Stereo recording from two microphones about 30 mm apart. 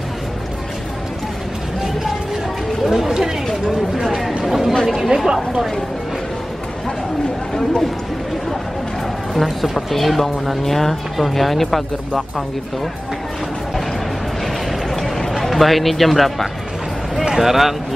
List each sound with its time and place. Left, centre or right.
2.9 s a sound: centre
4.8 s chatter: centre
5.3 s speech: centre
9.4 s speech: centre
14.4 s a sound: centre
15.5 s speech: centre
17.4 s speech: centre